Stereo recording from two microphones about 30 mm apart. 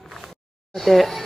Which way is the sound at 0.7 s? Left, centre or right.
Centre.